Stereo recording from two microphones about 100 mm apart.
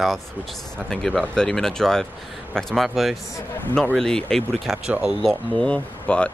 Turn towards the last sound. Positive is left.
turn(degrees=10)  # may be behind; listen again after turning